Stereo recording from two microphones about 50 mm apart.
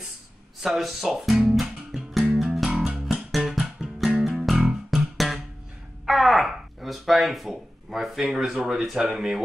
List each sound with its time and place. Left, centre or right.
0.6 s speech: centre
1.5 s music: centre
6.0 s a sound: centre
6.8 s speech: centre